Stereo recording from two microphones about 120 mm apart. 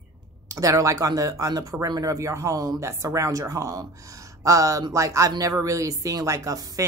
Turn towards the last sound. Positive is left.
turn(degrees=-30)  # may be behind; listen again after turning